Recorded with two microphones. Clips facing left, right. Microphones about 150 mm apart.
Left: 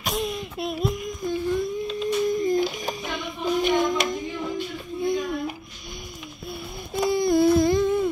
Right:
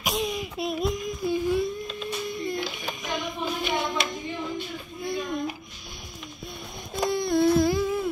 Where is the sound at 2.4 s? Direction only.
45° left (ahead or behind).